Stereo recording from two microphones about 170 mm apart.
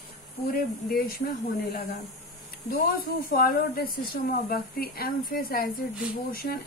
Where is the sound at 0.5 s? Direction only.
60° left (ahead or behind).